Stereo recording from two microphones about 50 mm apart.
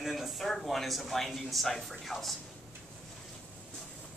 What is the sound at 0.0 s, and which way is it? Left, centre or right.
Speech, centre.